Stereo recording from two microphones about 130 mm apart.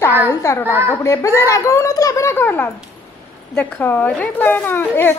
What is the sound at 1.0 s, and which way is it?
A woman's voice, 20° left (ahead or behind).